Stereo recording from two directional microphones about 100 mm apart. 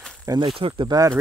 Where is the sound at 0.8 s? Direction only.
35° right (ahead or behind).